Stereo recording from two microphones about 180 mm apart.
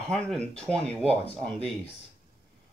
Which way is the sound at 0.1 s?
5° left (ahead or behind).